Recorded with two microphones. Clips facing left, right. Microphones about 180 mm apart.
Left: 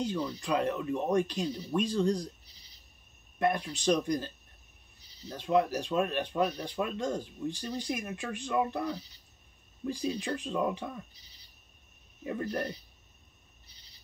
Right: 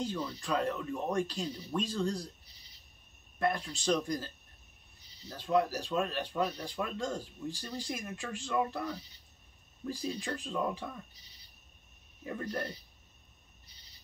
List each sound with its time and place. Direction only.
0.4 s speech: 15° left (ahead or behind)
3.3 s speech: 20° left (ahead or behind)
5.3 s speech: 20° left (ahead or behind)
12.2 s speech: 20° left (ahead or behind)